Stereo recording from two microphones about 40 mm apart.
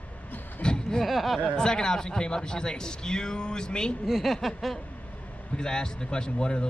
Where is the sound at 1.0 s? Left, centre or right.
Centre.